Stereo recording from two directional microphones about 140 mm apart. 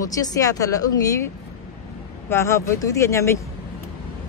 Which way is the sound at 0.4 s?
25° left (ahead or behind).